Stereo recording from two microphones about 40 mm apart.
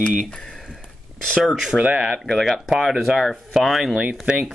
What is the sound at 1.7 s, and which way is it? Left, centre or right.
Speech, right.